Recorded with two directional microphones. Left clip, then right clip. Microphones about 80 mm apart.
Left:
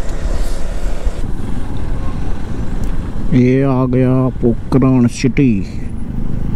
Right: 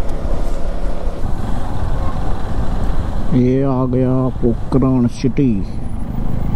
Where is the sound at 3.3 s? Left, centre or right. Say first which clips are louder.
Left 3 dB; left.